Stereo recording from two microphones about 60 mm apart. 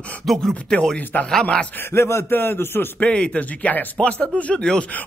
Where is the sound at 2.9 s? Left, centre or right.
Centre.